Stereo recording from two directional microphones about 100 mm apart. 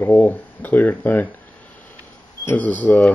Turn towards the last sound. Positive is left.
turn(degrees=20)  # may be behind; listen again after turning